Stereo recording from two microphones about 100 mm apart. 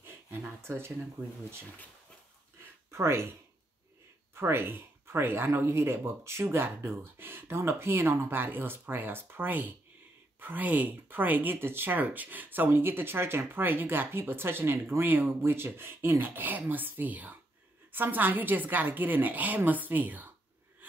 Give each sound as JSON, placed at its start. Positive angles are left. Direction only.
{"t": 0.0, "sound": "speech", "side_deg": -20}
{"t": 2.9, "sound": "speech", "side_deg": -25}
{"t": 4.4, "sound": "a woman's voice", "side_deg": -20}